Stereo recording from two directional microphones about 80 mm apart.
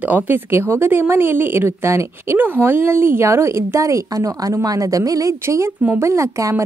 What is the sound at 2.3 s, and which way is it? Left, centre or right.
Speech, right.